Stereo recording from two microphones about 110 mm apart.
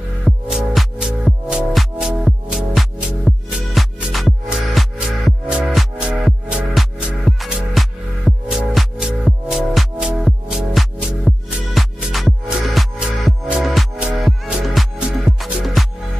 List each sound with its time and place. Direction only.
0.2 s music: centre (ahead or behind)
15.4 s music: centre (ahead or behind)